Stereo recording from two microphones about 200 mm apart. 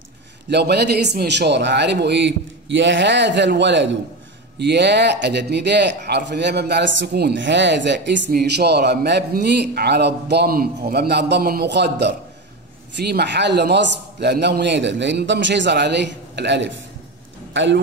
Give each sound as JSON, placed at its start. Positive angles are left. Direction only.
{"t": 0.5, "sound": "speech", "side_deg": -55}